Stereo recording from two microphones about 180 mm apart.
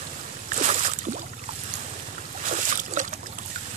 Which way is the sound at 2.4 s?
45° right (ahead or behind).